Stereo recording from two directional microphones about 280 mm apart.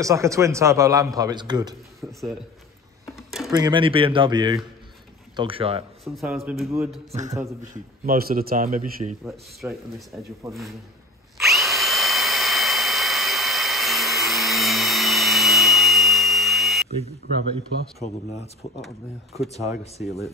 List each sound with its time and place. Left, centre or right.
0.0 s a man's voice: centre
3.2 s a sound: centre
3.5 s a man's voice: centre
6.1 s speech: centre
7.1 s a man's voice: right
7.3 s a man's voice: centre
7.7 s a man's voice: right
9.2 s speech: centre
11.3 s drill: centre